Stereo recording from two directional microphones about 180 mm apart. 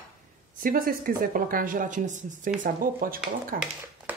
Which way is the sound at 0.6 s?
50° right (ahead or behind).